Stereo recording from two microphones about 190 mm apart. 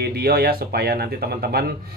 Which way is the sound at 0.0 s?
55° right (ahead or behind).